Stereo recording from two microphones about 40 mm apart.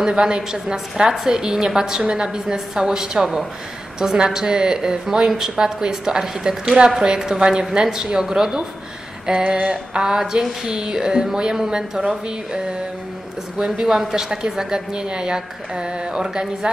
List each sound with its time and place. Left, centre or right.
0.0 s a woman's voice: right
13.6 s a woman's voice: centre